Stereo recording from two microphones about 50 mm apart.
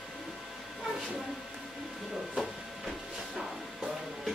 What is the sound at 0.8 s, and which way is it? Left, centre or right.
Train, centre.